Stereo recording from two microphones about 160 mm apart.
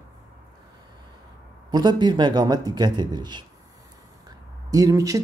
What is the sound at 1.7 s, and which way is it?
Speech, 25° right (ahead or behind).